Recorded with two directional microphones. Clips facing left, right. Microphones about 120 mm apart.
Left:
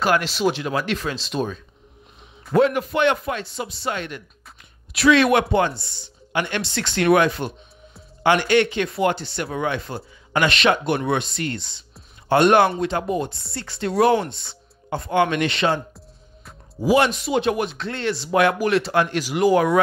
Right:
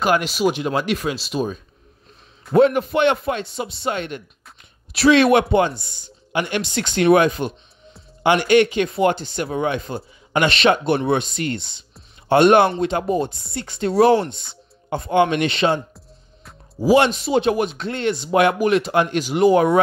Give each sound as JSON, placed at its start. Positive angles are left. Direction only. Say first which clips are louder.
{"t": 0.0, "sound": "speech", "louder": "right 2 dB", "side_deg": -15}
{"t": 2.5, "sound": "speech", "louder": "right 3 dB", "side_deg": -25}
{"t": 5.7, "sound": "speech", "louder": "right 1 dB", "side_deg": -50}
{"t": 6.3, "sound": "speech", "louder": "right 2 dB", "side_deg": -15}
{"t": 9.1, "sound": "speech", "louder": "right 1 dB", "side_deg": -45}
{"t": 9.4, "sound": "speech", "louder": "right 3 dB", "side_deg": -20}
{"t": 13.3, "sound": "speech", "louder": "even", "side_deg": -50}
{"t": 13.6, "sound": "speech", "louder": "right 3 dB", "side_deg": -20}
{"t": 16.8, "sound": "speech", "louder": "right 3 dB", "side_deg": -25}